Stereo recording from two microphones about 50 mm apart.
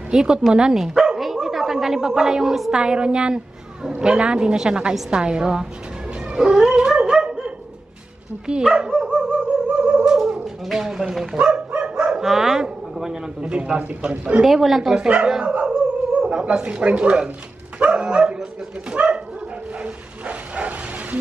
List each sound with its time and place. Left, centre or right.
0.1 s a woman's voice: centre
1.2 s a sound: centre
2.8 s a woman's voice: centre
6.8 s dog: centre
8.5 s a woman's voice: right
8.9 s dog: centre
9.2 s music: centre
10.2 s speech: centre
11.3 s bow-wow: right
13.4 s a woman's voice: right
14.4 s a woman's voice: centre
15.5 s dog: centre
17.7 s speech: right
19.8 s bow-wow: right